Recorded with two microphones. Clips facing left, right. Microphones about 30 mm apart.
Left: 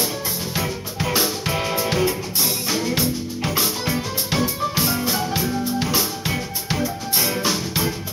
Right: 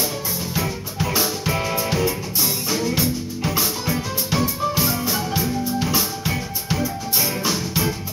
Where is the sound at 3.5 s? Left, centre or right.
Centre.